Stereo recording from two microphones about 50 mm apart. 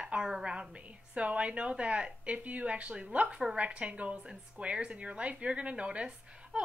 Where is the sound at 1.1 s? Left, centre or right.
Right.